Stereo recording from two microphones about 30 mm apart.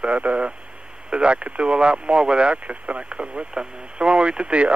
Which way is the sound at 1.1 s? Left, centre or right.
Right.